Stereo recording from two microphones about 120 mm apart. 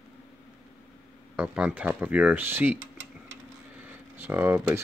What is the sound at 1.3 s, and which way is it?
Speech, 10° right (ahead or behind).